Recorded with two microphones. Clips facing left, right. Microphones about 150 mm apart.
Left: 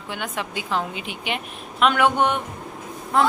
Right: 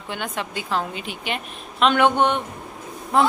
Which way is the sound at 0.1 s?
10° left (ahead or behind).